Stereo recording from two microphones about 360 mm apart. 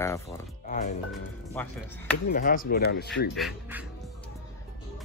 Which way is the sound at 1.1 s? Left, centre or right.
Centre.